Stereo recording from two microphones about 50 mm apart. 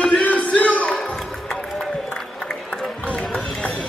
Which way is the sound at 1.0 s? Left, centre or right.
Centre.